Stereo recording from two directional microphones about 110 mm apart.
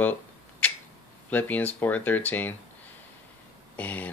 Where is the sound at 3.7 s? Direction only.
15° left (ahead or behind).